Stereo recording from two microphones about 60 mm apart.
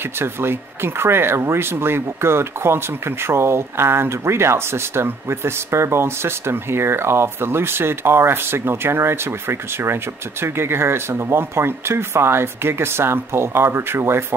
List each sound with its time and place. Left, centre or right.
0.2 s speech: right